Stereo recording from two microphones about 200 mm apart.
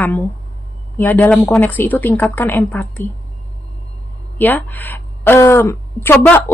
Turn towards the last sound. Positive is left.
turn(degrees=10)  # may be behind; listen again after turning